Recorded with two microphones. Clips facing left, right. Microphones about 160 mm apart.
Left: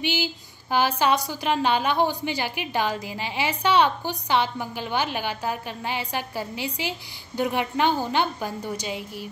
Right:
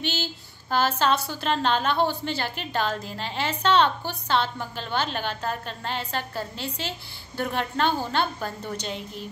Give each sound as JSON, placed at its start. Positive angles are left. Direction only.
{"t": 0.0, "sound": "a woman's voice", "side_deg": 10}